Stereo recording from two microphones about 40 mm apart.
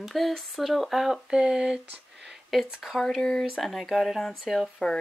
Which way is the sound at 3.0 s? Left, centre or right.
Centre.